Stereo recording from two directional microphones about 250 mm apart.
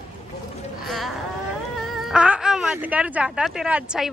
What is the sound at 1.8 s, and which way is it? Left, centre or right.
A woman's voice, centre.